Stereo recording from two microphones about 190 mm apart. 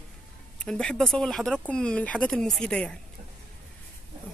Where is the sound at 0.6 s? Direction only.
5° left (ahead or behind).